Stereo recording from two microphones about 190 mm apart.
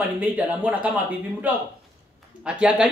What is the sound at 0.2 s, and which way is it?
Speech, 10° right (ahead or behind).